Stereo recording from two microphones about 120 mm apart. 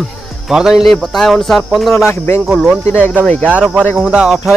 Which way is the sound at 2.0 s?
20° left (ahead or behind).